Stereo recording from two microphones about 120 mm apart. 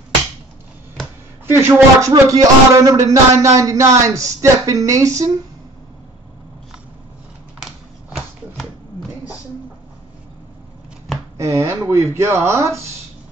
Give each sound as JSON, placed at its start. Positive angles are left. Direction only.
{"t": 1.4, "sound": "speech", "side_deg": -25}
{"t": 7.6, "sound": "a sound", "side_deg": 0}
{"t": 11.3, "sound": "speech", "side_deg": -25}